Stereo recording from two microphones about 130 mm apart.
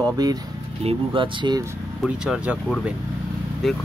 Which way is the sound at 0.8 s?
45° right (ahead or behind).